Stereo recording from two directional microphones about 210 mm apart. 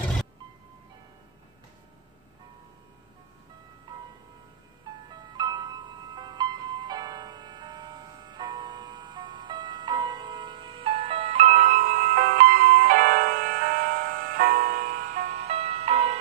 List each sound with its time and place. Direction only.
4.9 s music: 20° right (ahead or behind)